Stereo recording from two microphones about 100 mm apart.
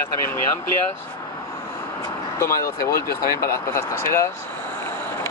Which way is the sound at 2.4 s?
30° left (ahead or behind).